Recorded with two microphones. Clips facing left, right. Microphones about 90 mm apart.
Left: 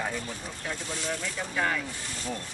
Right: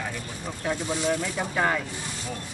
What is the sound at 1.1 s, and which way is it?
Speech, 45° right (ahead or behind).